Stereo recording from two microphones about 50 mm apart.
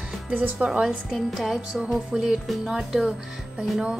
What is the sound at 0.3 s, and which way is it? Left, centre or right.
Speech, right.